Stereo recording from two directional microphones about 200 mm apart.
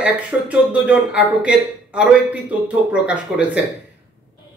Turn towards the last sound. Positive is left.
turn(degrees=-5)  # may be behind; listen again after turning